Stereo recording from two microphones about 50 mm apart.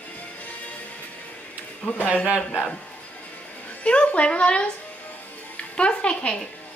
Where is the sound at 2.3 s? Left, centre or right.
Centre.